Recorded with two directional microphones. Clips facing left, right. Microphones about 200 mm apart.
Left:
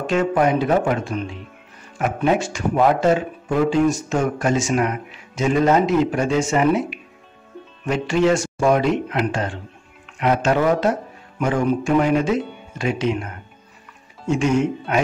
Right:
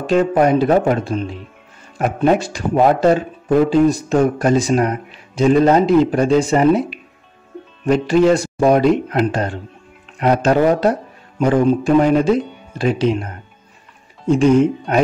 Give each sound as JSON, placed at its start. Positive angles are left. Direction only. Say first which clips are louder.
{"t": 0.0, "sound": "a man's voice", "louder": "right 4 dB", "side_deg": -35}